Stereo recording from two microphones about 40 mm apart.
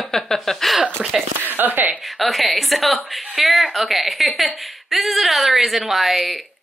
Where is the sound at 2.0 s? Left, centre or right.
Centre.